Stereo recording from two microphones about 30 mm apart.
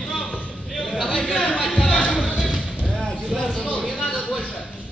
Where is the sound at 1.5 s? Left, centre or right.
Left.